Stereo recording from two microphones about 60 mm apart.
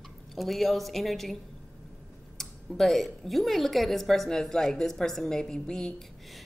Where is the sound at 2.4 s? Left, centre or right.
Centre.